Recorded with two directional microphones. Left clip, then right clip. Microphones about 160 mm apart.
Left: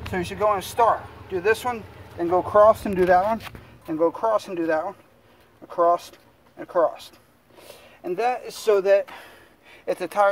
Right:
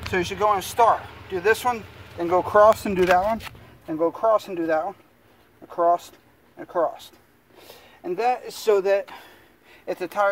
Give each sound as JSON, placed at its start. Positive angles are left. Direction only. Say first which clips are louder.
{"t": 0.0, "sound": "speech", "louder": "right 1 dB", "side_deg": 10}
{"t": 9.8, "sound": "speech", "louder": "left 2 dB", "side_deg": 25}